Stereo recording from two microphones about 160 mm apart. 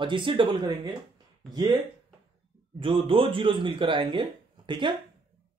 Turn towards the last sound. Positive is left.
turn(degrees=-30)  # may be behind; listen again after turning